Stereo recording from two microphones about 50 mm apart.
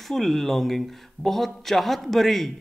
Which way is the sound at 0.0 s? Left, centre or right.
Centre.